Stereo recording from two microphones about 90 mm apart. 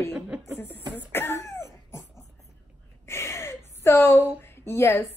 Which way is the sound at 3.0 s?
30° left (ahead or behind).